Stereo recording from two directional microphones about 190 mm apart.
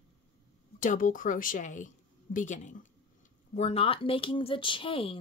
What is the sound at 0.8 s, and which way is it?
A woman's voice, 45° left (ahead or behind).